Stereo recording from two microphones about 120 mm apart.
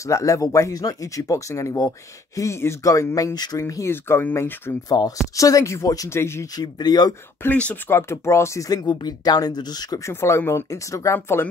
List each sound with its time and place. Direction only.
0.0 s speech: 25° left (ahead or behind)
4.9 s speech: 30° left (ahead or behind)
6.5 s speech: 35° left (ahead or behind)
7.4 s speech: 10° left (ahead or behind)
7.9 s speech: 20° left (ahead or behind)